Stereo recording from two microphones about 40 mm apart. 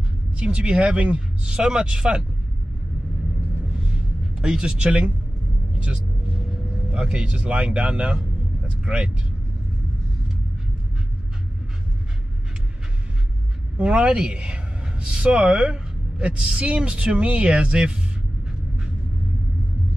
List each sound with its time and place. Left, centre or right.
0.3 s speech: right
4.4 s speech: centre
4.6 s speech: right
13.7 s a man's voice: right